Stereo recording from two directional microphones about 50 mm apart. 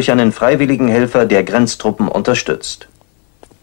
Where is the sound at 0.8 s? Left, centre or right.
Left.